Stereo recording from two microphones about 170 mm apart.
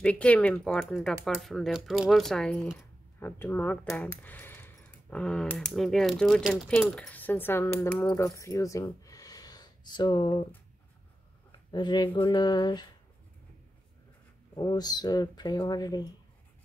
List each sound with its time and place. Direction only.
0.0 s speech: 5° left (ahead or behind); by 10.4 s 25° left (ahead or behind)
11.7 s speech: 25° left (ahead or behind)
14.5 s speech: 25° left (ahead or behind)